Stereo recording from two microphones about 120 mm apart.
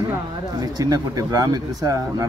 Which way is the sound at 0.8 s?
30° right (ahead or behind).